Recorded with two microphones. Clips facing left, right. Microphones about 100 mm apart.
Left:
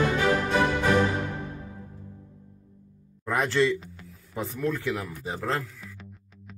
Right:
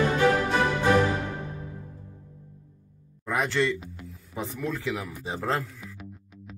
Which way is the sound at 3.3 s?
Centre (ahead or behind).